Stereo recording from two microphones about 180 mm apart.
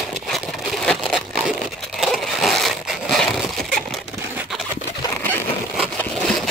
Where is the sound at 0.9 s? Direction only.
5° left (ahead or behind).